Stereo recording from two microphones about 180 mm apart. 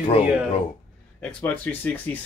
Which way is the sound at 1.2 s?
10° left (ahead or behind).